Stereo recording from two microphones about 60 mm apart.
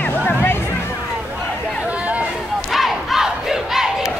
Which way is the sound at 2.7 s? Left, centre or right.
Centre.